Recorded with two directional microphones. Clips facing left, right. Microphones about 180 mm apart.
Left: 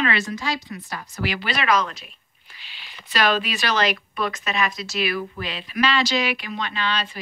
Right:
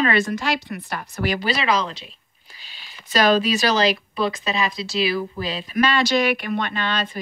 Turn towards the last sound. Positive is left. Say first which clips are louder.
# right 1 dB
turn(degrees=-50)  # may be behind; listen again after turning